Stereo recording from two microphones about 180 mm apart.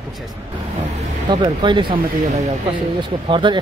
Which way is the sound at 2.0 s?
45° right (ahead or behind).